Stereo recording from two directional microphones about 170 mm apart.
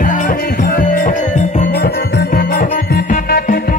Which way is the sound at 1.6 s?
65° left (ahead or behind).